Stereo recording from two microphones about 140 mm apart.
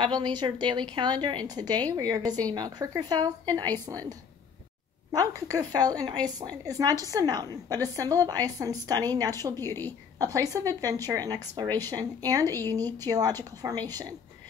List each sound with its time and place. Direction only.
0.0 s a woman's voice: 30° right (ahead or behind)
5.1 s a woman's voice: 25° right (ahead or behind)
9.6 s a woman's voice: 15° left (ahead or behind)
10.1 s a woman's voice: 25° right (ahead or behind)